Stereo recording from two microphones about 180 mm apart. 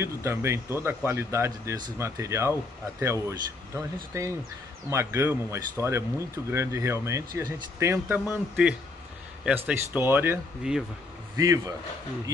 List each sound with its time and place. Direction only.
0.0 s speech: 15° right (ahead or behind)
11.3 s speech: 20° right (ahead or behind)